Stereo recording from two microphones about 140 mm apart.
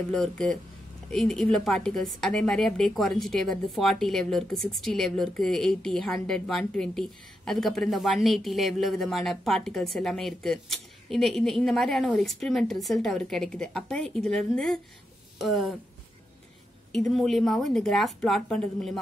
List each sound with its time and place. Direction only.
0.1 s a woman's voice: 5° left (ahead or behind)
15.3 s a sound: centre (ahead or behind)
16.9 s a woman's voice: centre (ahead or behind)